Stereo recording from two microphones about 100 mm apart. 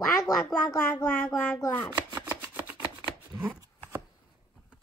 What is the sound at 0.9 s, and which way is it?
Speech, 20° left (ahead or behind).